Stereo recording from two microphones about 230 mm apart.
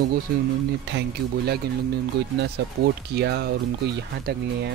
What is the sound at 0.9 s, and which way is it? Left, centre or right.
Speech, right.